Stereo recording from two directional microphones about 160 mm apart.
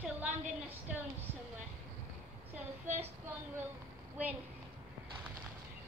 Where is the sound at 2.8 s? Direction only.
45° right (ahead or behind).